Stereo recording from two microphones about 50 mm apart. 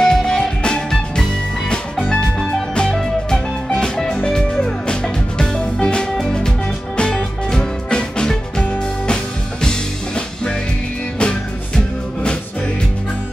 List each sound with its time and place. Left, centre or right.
0.0 s music: centre
2.9 s music: centre